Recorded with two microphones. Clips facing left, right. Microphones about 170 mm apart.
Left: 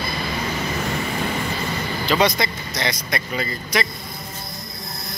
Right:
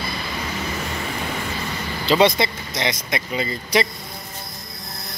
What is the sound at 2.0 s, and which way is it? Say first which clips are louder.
Speech: right 3 dB; 25° right (ahead or behind).